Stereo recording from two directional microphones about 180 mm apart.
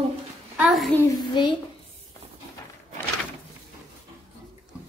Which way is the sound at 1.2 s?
25° left (ahead or behind).